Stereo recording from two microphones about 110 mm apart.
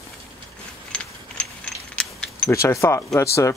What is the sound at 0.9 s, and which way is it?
Mechanisms, 10° left (ahead or behind).